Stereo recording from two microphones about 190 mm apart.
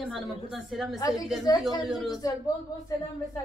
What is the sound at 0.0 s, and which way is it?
Speech, centre (ahead or behind).